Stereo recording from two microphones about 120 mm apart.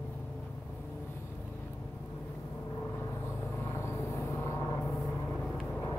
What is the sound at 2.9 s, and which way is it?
Vehicle, 20° left (ahead or behind).